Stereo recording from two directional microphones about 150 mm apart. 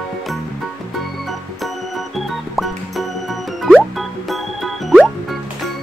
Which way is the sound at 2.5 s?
Centre (ahead or behind).